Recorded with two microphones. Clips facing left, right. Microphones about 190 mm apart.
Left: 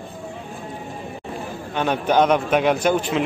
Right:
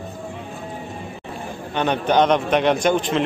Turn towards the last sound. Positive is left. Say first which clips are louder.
# right 1 dB
turn(degrees=5)  # may be behind; listen again after turning